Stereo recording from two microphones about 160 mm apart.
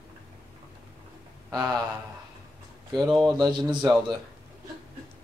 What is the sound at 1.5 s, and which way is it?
Speech, 20° right (ahead or behind).